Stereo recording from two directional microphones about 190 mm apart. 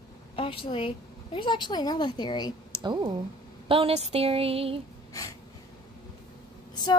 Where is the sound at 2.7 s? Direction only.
25° right (ahead or behind).